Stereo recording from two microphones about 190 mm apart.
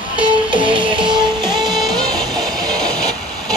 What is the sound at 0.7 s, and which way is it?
Music, 25° right (ahead or behind).